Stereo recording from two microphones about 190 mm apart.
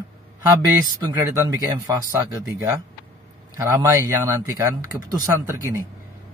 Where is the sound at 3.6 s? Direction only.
15° right (ahead or behind).